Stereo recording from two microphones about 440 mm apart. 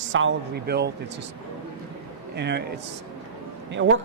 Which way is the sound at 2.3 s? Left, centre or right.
Right.